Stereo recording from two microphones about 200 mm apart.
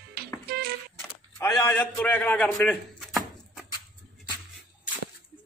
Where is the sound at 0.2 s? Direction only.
50° right (ahead or behind).